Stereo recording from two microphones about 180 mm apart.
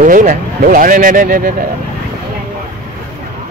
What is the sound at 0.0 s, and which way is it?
Speech, 50° right (ahead or behind).